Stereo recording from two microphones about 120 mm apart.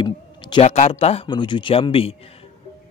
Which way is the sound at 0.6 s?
70° left (ahead or behind).